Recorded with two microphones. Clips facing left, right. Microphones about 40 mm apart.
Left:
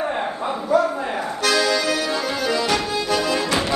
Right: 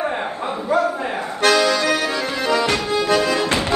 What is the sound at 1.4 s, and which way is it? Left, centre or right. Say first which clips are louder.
Accordion: right 4 dB; right.